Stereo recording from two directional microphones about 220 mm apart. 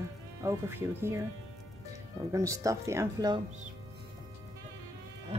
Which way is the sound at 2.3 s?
15° right (ahead or behind).